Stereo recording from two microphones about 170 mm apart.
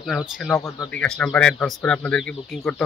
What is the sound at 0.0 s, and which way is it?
Speech, centre (ahead or behind).